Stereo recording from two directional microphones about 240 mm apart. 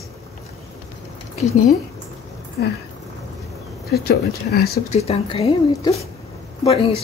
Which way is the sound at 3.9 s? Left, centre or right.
Left.